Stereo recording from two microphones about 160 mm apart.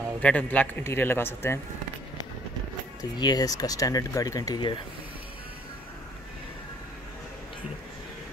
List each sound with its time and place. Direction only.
0.2 s a man's voice: 10° left (ahead or behind)
3.0 s speech: 25° left (ahead or behind)